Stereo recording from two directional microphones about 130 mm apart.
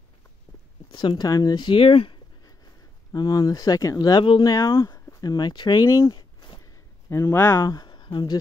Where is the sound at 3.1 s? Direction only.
25° left (ahead or behind).